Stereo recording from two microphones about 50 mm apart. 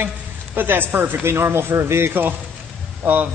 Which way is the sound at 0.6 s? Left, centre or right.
Right.